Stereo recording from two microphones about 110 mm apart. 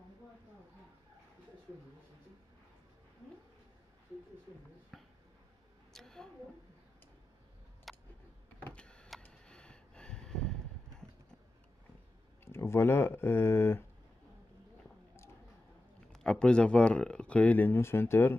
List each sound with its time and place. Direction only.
4.9 s a sound: centre (ahead or behind)
5.9 s a woman's voice: 5° left (ahead or behind)
7.9 s a sound: centre (ahead or behind)
8.6 s power windows: 10° left (ahead or behind)
12.4 s speech: 25° left (ahead or behind)
16.1 s speech: 5° left (ahead or behind)